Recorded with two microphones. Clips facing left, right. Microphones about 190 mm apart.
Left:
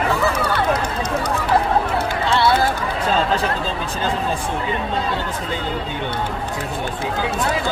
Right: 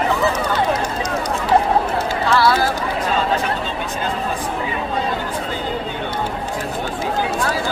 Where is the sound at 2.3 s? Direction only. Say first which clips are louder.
Right 1 dB; 25° left (ahead or behind).